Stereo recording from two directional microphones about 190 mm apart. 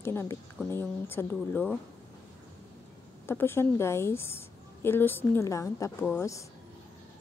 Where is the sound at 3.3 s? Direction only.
15° left (ahead or behind).